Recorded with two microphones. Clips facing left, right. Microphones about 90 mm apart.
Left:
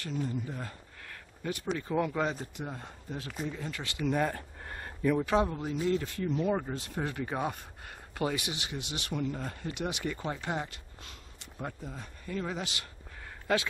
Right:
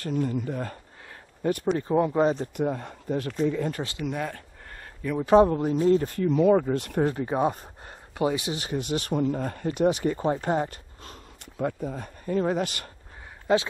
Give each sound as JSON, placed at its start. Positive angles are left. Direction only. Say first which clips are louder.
{"t": 0.1, "sound": "speech", "louder": "right 8 dB", "side_deg": -60}
{"t": 1.9, "sound": "speech", "louder": "right 8 dB", "side_deg": -30}
{"t": 2.5, "sound": "speech", "louder": "right 12 dB", "side_deg": -60}
{"t": 4.0, "sound": "a sound", "louder": "left 4 dB", "side_deg": 0}
{"t": 5.2, "sound": "speech", "louder": "right 10 dB", "side_deg": -35}
{"t": 6.1, "sound": "speech", "louder": "right 10 dB", "side_deg": -75}
{"t": 7.0, "sound": "speech", "louder": "right 8 dB", "side_deg": -35}
{"t": 8.5, "sound": "speech", "louder": "right 10 dB", "side_deg": -40}
{"t": 13.5, "sound": "a man's voice", "louder": "right 7 dB", "side_deg": -25}